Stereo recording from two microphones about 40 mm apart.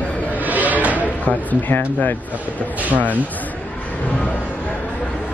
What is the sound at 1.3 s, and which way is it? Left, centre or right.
Speech, left.